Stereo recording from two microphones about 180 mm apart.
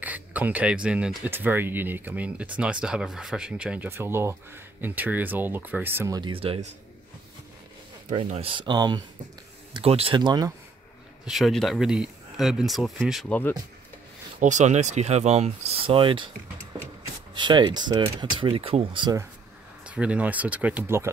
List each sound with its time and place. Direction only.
0.0 s speech: 10° right (ahead or behind); by 6.7 s 30° right (ahead or behind)
8.2 s speech: 30° right (ahead or behind)
11.2 s speech: centre (ahead or behind)
14.4 s speech: 40° right (ahead or behind)
17.3 s speech: 25° right (ahead or behind)
19.8 s speech: 5° right (ahead or behind)